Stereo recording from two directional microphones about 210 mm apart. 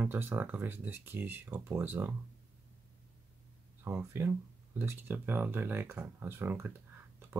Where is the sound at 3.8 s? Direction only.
15° right (ahead or behind).